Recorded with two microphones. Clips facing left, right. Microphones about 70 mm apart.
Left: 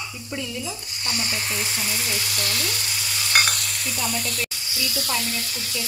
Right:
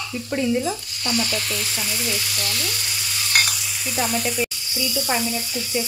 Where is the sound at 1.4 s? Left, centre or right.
Left.